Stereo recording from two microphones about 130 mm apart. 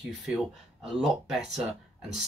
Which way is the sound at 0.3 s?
10° right (ahead or behind).